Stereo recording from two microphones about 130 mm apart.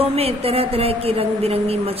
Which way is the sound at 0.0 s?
50° right (ahead or behind).